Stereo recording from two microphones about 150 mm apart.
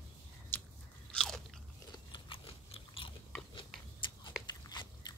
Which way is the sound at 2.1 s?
35° left (ahead or behind).